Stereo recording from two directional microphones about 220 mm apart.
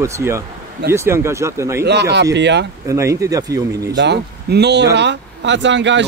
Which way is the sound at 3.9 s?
50° right (ahead or behind).